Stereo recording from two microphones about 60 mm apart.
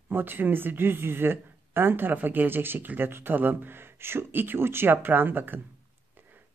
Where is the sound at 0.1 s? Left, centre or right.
Right.